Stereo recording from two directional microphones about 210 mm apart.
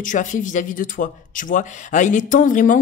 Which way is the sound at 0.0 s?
35° left (ahead or behind).